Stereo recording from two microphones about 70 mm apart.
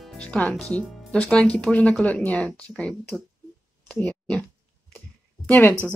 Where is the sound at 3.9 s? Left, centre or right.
Centre.